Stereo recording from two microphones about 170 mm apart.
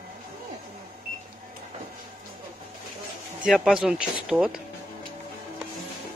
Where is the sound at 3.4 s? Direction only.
Centre (ahead or behind).